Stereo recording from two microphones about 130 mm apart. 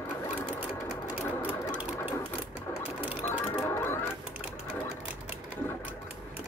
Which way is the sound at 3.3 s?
15° left (ahead or behind).